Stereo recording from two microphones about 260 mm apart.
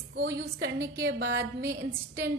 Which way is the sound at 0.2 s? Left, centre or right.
Right.